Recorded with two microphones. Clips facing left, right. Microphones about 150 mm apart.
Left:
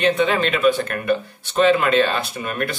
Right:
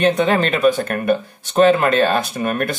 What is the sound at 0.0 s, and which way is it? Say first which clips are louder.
Speech: right 2 dB; 45° right (ahead or behind).